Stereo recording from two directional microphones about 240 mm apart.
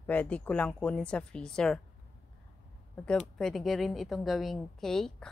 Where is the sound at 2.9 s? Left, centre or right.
Centre.